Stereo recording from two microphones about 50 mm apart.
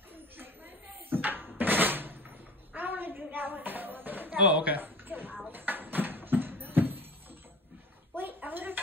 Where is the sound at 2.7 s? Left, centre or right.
Right.